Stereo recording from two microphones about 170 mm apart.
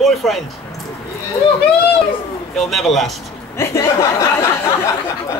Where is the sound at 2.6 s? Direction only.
Centre (ahead or behind).